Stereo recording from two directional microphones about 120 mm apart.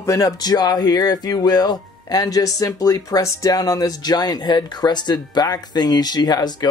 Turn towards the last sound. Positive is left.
turn(degrees=35)  # may be behind; listen again after turning